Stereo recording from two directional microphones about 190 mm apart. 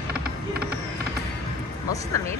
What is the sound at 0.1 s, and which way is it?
Mechanisms, 55° right (ahead or behind).